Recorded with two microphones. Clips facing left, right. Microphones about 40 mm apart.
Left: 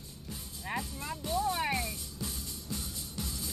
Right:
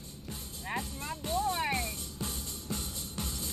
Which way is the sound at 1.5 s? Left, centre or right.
Centre.